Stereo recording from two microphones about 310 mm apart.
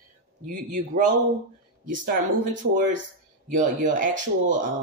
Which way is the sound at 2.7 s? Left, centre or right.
Right.